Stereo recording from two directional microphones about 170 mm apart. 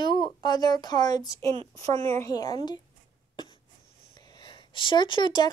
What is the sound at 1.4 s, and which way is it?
Speech, 40° right (ahead or behind).